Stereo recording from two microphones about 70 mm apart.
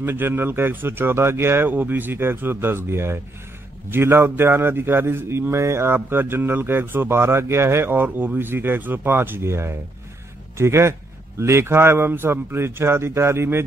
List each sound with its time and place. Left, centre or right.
0.0 s speech: right